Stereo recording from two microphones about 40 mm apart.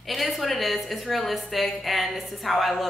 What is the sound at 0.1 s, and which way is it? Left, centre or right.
A woman's voice, centre.